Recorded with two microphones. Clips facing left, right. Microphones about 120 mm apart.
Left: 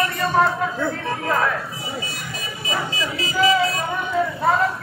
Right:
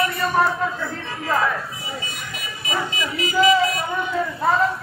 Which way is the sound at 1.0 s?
55° left (ahead or behind).